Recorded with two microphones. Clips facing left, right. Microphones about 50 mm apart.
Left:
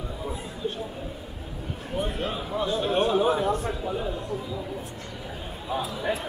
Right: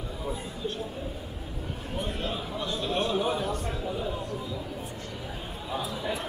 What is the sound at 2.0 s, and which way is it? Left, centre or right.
A man's voice, centre.